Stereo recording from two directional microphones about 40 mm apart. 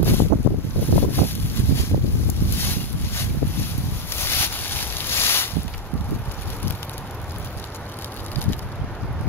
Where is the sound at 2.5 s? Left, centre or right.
Left.